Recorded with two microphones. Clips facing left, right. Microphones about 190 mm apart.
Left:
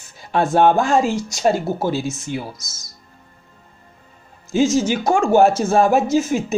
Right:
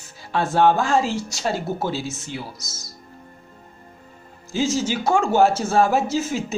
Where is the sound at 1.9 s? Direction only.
50° left (ahead or behind).